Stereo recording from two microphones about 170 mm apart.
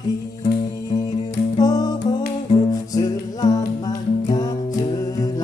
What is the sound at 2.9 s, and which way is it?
Music, 20° left (ahead or behind).